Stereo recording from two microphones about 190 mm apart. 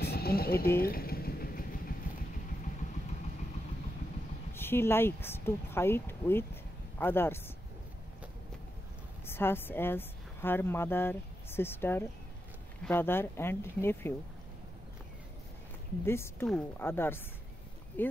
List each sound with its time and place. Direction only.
0.0 s a sound: 55° left (ahead or behind)
0.7 s vehicle: 50° left (ahead or behind)
4.6 s speech: 10° left (ahead or behind)
9.2 s speech: 10° left (ahead or behind)
16.1 s speech: 15° left (ahead or behind)
16.4 s speech: centre (ahead or behind)
16.8 s speech: 10° left (ahead or behind)